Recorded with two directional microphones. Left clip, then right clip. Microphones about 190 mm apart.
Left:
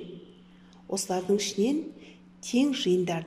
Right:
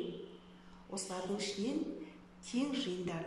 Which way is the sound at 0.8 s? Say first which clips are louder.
Left 13 dB; 50° left (ahead or behind).